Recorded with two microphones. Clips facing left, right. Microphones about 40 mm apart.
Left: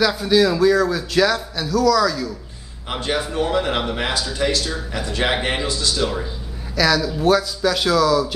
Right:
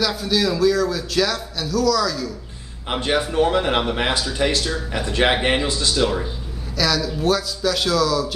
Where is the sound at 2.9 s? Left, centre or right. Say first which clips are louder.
Right 2 dB; centre.